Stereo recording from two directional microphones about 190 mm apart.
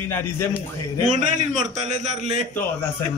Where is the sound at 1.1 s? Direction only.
40° right (ahead or behind).